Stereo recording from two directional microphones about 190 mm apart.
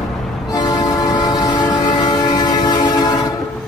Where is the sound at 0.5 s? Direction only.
20° left (ahead or behind).